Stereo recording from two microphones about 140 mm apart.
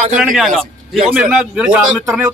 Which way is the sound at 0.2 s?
Centre (ahead or behind).